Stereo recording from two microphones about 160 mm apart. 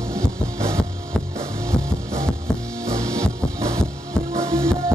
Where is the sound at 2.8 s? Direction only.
20° right (ahead or behind).